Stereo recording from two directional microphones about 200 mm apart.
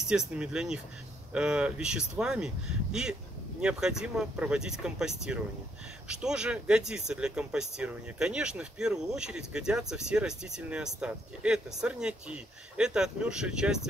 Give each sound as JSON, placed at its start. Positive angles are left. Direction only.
{"t": 0.1, "sound": "speech", "side_deg": -5}